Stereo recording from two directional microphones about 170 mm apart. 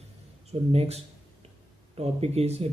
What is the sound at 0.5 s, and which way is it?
Speech, 40° right (ahead or behind).